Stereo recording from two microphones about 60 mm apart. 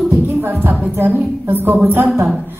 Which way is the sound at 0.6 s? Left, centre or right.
Right.